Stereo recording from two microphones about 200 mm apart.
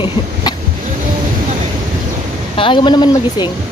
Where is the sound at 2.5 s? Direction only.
25° left (ahead or behind).